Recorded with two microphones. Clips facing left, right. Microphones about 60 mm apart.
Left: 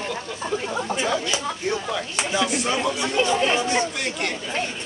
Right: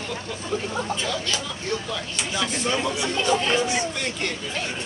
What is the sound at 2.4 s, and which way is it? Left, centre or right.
Speech, centre.